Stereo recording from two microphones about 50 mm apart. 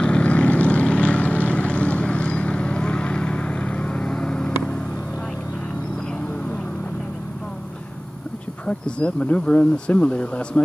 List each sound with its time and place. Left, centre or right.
0.0 s vehicle: left
8.6 s speech: left